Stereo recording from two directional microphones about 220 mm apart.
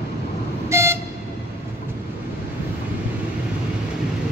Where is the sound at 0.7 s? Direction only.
10° right (ahead or behind).